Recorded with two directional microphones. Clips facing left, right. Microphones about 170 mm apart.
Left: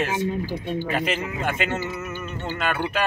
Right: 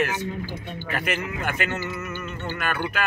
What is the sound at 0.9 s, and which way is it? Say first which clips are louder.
Speech: right 2 dB; 25° left (ahead or behind).